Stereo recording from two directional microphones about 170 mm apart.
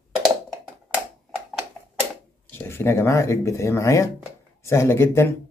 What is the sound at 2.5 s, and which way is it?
Speech, 15° left (ahead or behind).